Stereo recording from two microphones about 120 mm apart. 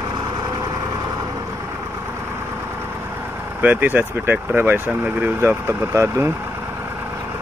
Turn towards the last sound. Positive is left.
turn(degrees=-20)  # may be behind; listen again after turning